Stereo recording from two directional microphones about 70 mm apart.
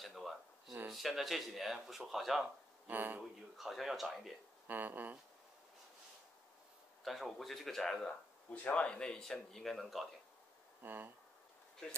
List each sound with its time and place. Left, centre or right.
0.0 s a sound: centre
0.9 s speech: centre
2.9 s speech: right
3.5 s speech: centre
4.6 s speech: right
7.1 s speech: centre
10.8 s speech: right